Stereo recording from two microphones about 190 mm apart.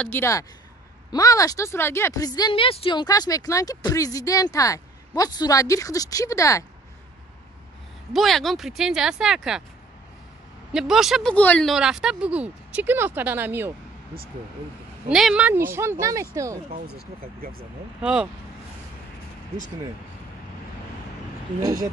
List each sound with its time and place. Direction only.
0.0 s speech: 10° left (ahead or behind)
8.1 s speech: centre (ahead or behind)
10.7 s speech: 5° right (ahead or behind)
15.0 s speech: 5° right (ahead or behind)
17.4 s speech: 50° right (ahead or behind)
18.0 s speech: 5° right (ahead or behind)